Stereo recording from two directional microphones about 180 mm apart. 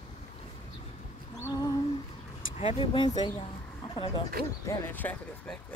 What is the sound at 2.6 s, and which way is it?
Speech, 30° left (ahead or behind).